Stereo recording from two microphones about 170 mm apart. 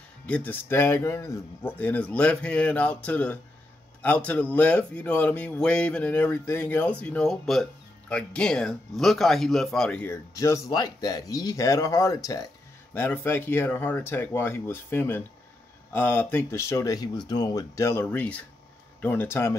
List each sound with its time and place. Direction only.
0.3 s speech: 10° left (ahead or behind)